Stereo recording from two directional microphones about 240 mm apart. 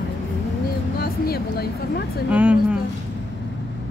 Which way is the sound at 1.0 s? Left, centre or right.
Left.